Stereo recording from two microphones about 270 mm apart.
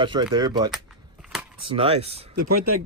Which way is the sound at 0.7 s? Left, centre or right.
Centre.